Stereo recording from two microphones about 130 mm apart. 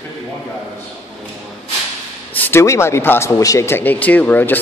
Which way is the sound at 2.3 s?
15° left (ahead or behind).